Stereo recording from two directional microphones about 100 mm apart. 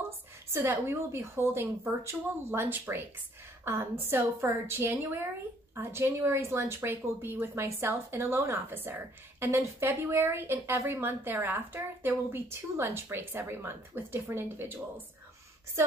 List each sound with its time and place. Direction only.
0.5 s a woman's voice: 20° right (ahead or behind)